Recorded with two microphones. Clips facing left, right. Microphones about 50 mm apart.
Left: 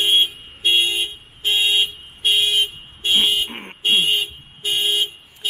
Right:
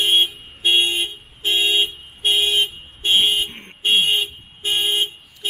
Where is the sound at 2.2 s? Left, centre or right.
Right.